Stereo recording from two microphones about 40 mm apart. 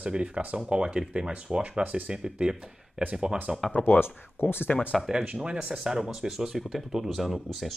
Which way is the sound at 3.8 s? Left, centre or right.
Left.